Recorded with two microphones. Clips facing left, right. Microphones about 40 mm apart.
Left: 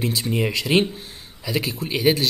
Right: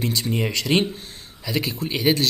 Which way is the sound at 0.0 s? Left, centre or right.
Centre.